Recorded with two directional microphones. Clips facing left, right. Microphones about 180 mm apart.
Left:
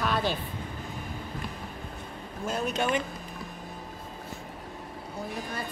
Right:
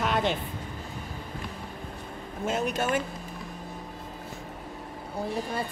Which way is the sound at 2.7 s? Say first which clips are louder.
Even; 5° right (ahead or behind).